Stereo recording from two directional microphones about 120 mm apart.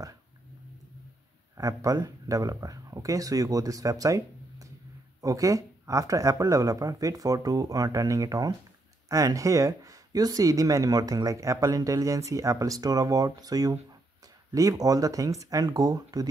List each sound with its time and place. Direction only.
1.6 s speech: 30° right (ahead or behind)